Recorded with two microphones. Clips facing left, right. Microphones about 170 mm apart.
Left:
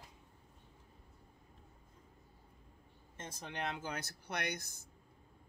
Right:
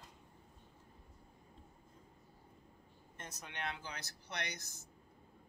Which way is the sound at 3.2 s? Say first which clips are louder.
Left 3 dB; 35° left (ahead or behind).